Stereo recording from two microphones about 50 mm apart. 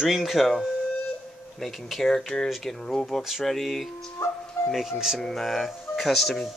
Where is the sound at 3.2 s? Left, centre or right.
Centre.